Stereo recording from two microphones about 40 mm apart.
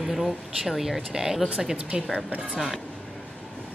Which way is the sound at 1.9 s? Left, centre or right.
Right.